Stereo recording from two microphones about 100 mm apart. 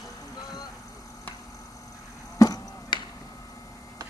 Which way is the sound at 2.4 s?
35° left (ahead or behind).